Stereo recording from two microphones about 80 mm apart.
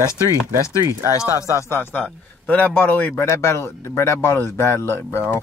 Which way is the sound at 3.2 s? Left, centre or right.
Left.